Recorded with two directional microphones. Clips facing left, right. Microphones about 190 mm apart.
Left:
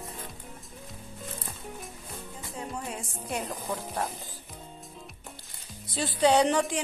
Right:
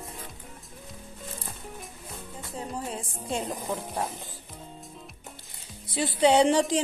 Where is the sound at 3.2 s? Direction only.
25° right (ahead or behind).